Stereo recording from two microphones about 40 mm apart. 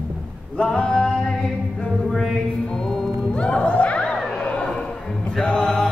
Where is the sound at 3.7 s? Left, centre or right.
Left.